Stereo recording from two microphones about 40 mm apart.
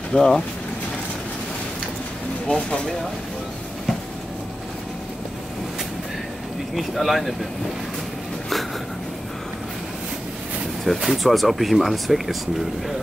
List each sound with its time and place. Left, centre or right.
0.1 s speech: centre
2.4 s speech: left
6.7 s speech: centre
11.0 s speech: centre